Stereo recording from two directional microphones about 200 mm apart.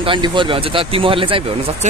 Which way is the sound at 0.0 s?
25° right (ahead or behind).